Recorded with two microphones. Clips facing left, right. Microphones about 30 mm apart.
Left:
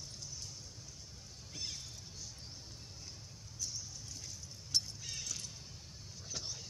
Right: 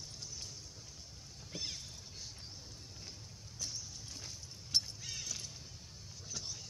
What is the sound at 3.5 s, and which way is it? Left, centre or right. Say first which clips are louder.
Water: even; right.